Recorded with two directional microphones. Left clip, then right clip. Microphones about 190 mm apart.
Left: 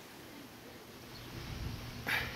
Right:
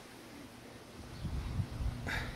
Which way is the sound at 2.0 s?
5° right (ahead or behind).